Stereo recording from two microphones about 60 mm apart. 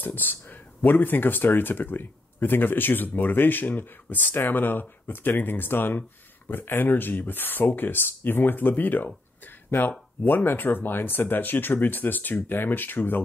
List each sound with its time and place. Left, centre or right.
0.0 s speech: left